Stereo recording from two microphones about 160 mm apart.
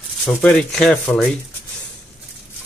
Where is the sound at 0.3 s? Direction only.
5° left (ahead or behind).